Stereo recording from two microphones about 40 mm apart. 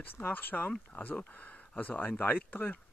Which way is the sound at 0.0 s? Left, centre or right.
Left.